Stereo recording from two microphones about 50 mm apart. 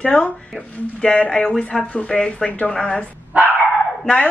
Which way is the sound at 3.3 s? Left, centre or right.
Right.